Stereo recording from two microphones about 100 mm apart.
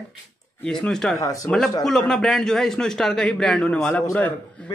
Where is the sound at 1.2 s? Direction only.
35° left (ahead or behind).